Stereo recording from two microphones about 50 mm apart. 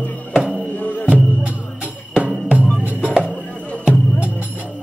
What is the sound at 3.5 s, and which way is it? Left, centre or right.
Music, left.